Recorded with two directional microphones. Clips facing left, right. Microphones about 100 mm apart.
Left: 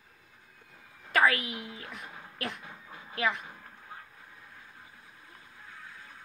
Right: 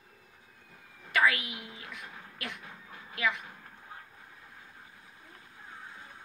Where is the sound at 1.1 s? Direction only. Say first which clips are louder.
Left 2 dB; 40° left (ahead or behind).